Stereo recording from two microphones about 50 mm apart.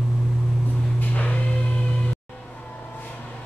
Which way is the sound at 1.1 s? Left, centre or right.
Left.